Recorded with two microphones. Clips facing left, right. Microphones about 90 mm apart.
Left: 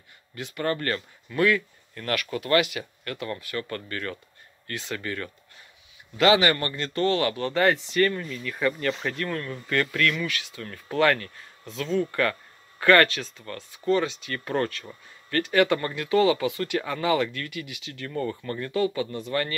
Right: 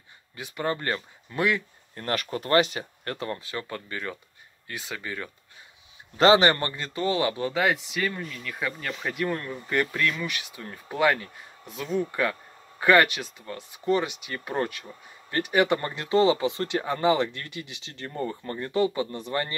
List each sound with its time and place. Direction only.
0.4 s speech: 15° right (ahead or behind)
2.0 s speech: 30° right (ahead or behind); by 5.3 s 10° right (ahead or behind)
6.1 s speech: 30° right (ahead or behind)
6.7 s speech: 10° right (ahead or behind)
7.5 s speech: 5° right (ahead or behind); by 19.5 s 25° right (ahead or behind)